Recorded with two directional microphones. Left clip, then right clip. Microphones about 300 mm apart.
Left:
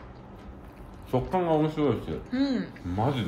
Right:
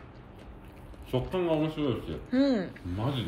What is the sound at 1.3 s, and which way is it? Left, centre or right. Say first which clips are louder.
Speech: left 4 dB; centre.